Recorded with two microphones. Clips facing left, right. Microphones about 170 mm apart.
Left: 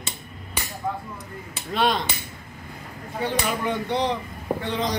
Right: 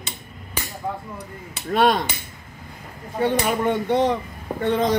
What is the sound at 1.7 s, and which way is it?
Speech, 50° right (ahead or behind).